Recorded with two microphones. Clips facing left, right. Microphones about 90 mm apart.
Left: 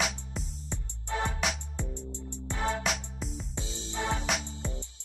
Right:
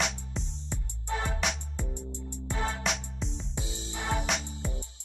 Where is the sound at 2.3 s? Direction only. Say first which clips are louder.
Right 3 dB; 15° right (ahead or behind).